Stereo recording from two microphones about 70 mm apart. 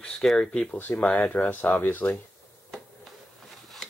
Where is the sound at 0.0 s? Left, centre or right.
Centre.